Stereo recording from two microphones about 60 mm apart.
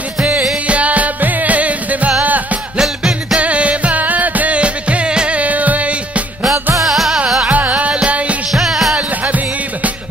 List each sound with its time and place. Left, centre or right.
0.2 s music: right
2.8 s music: centre
3.3 s music: right
6.8 s music: centre
7.4 s music: right
8.5 s music: centre
8.9 s music: right